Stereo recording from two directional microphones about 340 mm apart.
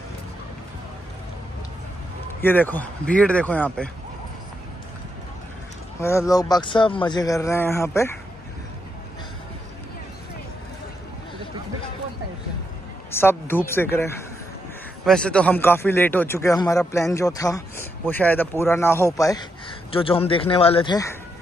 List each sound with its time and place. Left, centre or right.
2.4 s a man's voice: centre
5.9 s speech: centre
13.1 s speech: centre